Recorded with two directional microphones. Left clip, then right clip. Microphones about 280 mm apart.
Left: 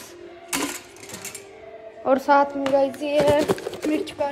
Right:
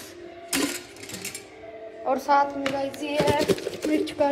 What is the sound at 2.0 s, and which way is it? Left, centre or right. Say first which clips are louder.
Speech: left 4 dB; left.